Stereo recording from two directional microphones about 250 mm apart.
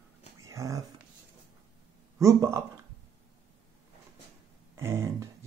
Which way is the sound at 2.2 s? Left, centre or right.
Centre.